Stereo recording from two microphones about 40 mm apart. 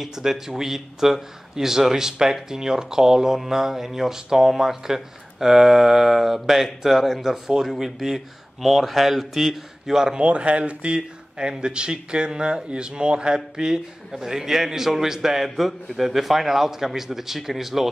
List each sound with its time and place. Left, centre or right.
0.0 s speech: centre
10.1 s speech: right; by 17.8 s centre